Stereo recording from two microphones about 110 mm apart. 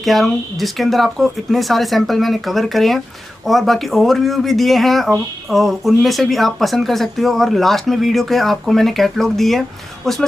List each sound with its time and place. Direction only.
0.0 s speech: centre (ahead or behind)